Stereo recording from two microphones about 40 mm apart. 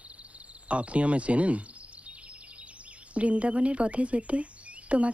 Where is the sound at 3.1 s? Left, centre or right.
Right.